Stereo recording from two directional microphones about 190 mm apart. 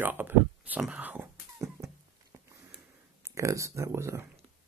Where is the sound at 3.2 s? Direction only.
15° right (ahead or behind).